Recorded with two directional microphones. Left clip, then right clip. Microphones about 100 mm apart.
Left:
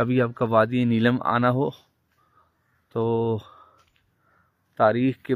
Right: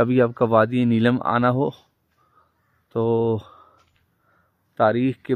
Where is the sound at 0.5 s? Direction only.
30° right (ahead or behind).